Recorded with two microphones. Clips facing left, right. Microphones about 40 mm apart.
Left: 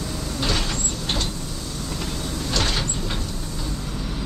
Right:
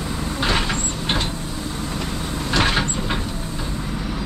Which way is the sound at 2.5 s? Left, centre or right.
Right.